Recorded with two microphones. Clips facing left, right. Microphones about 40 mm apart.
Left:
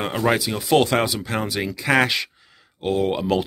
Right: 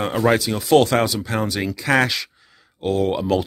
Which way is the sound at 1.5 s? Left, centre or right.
Centre.